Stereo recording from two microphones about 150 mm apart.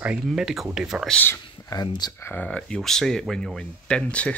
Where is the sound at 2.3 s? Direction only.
10° left (ahead or behind).